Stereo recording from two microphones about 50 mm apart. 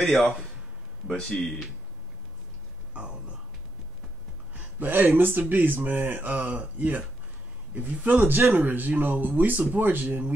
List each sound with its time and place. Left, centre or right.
0.0 s speech: centre
2.9 s a sound: right
4.6 s speech: right
6.5 s speech: right